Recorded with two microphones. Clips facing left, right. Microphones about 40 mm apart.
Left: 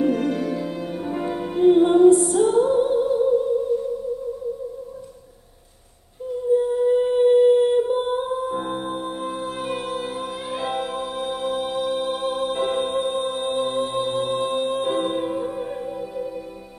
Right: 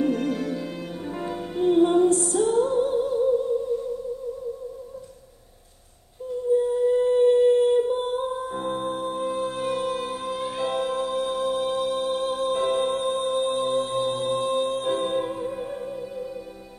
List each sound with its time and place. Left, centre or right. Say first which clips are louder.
0.0 s music: left 3 dB; centre
6.5 s humming: left 2 dB; centre
8.4 s music: left 2 dB; centre
12.8 s music: left 1 dB; centre